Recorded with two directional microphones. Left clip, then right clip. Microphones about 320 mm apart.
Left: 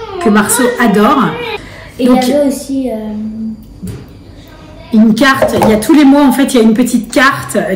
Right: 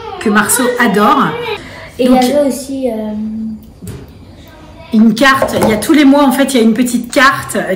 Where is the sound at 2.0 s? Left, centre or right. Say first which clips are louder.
Even; centre.